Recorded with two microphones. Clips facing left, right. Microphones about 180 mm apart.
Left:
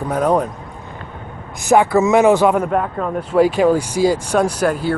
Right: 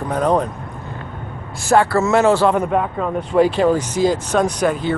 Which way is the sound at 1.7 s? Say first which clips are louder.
Left 2 dB; 15° left (ahead or behind).